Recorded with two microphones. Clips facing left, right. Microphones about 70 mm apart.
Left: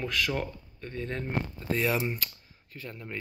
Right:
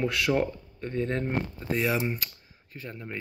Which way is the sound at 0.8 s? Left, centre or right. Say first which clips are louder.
Right 6 dB; right.